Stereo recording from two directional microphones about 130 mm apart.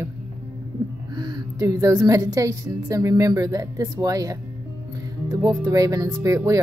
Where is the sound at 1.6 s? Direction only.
25° right (ahead or behind).